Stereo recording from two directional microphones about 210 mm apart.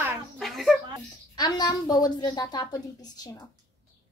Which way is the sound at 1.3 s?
20° left (ahead or behind).